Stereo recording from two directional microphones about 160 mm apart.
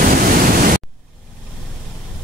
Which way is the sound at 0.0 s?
60° right (ahead or behind).